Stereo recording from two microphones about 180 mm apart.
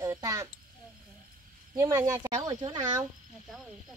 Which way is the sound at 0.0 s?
20° right (ahead or behind).